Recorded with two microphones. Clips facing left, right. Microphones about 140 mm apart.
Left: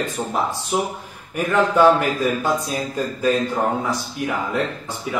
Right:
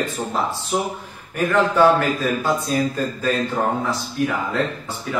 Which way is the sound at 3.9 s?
15° left (ahead or behind).